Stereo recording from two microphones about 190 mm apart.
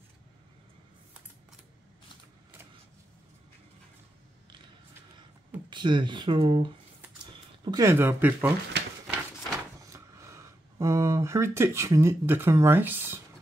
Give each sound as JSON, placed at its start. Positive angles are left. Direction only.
{"t": 5.7, "sound": "speech", "side_deg": -25}
{"t": 9.9, "sound": "speech", "side_deg": -15}